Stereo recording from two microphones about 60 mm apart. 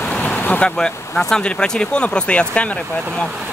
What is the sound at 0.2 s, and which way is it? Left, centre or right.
Vehicle, left.